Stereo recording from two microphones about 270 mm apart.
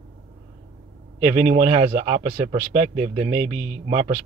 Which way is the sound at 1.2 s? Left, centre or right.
Right.